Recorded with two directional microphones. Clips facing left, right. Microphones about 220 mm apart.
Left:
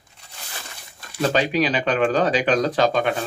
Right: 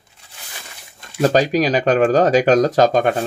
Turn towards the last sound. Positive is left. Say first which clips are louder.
# right 5 dB
turn(degrees=-45)  # may be behind; listen again after turning